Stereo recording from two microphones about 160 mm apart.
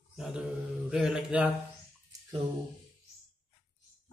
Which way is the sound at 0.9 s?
5° right (ahead or behind).